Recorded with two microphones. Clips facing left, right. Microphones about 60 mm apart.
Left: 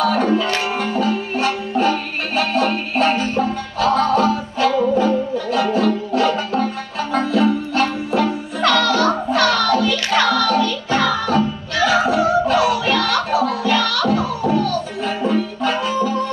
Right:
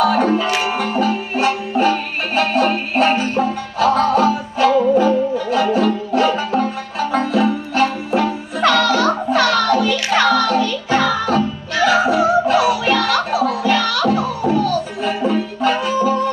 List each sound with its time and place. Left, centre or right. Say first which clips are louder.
0.0 s music: right 2 dB; centre
0.9 s banjo: right 1 dB; centre
2.5 s music: right 2 dB; centre